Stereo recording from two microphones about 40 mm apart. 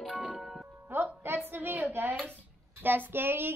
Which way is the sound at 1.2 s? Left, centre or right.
Right.